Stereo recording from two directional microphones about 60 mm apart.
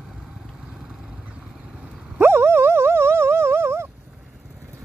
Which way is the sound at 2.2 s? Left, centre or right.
Right.